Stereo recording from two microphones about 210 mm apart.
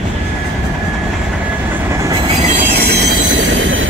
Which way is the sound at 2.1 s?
25° right (ahead or behind).